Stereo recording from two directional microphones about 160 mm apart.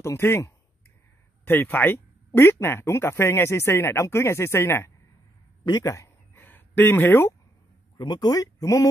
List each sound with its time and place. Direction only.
0.0 s speech: 15° left (ahead or behind)
5.7 s a sound: 20° left (ahead or behind)
8.0 s speech: 25° left (ahead or behind)